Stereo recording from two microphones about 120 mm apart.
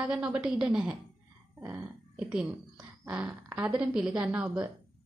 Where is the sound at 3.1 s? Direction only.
15° right (ahead or behind).